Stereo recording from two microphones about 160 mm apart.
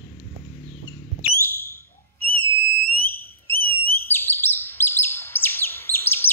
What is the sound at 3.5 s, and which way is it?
Bird, 10° left (ahead or behind).